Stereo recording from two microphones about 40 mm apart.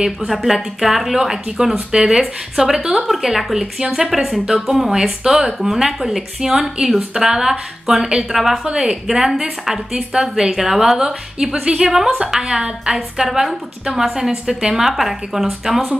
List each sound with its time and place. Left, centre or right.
0.3 s a woman's voice: centre
11.9 s speech: centre